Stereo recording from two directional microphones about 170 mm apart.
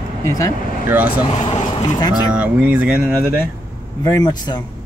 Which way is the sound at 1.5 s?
35° left (ahead or behind).